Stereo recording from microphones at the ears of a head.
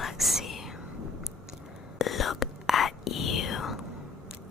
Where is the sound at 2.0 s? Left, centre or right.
Left.